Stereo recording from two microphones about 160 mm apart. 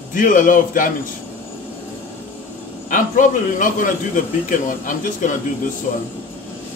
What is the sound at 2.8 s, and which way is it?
A man's voice, 55° left (ahead or behind).